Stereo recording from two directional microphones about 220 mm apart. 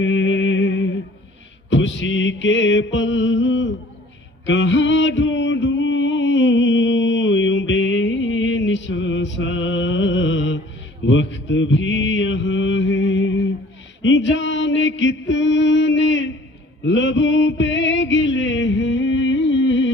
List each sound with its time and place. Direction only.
0.0 s music: 60° left (ahead or behind)
1.7 s mantra: 55° left (ahead or behind)
4.5 s music: 55° left (ahead or behind)
11.1 s mantra: 55° left (ahead or behind)
16.8 s a sound: 55° left (ahead or behind)